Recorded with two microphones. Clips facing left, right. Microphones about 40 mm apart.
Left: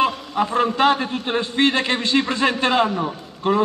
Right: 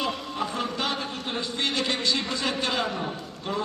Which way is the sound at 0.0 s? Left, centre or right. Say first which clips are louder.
Left 9 dB; left.